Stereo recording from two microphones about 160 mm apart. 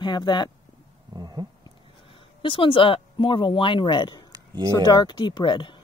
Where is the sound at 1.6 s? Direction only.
35° left (ahead or behind).